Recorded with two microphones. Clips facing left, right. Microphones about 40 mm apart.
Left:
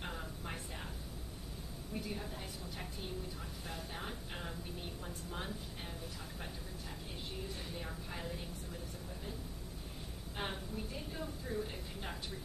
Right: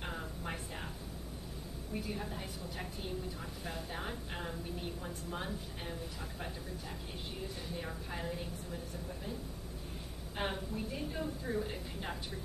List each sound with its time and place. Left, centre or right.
0.0 s a sound: centre
2.0 s a woman's voice: centre
7.7 s a woman's voice: centre
10.3 s a woman's voice: centre